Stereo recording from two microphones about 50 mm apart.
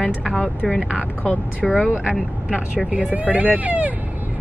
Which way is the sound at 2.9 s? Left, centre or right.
Right.